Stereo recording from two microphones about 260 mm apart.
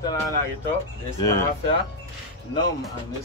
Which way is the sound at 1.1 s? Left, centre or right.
Centre.